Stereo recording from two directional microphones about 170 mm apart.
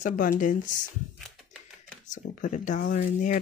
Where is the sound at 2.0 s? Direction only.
50° left (ahead or behind).